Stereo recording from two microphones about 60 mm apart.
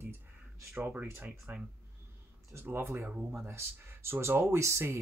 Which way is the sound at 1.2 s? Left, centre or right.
Right.